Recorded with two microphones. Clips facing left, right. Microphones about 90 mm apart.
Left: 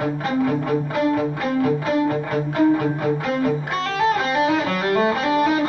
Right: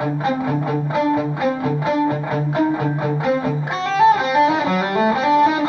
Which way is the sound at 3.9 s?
20° right (ahead or behind).